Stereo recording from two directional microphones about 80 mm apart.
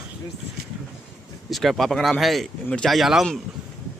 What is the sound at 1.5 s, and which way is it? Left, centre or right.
Speech, centre.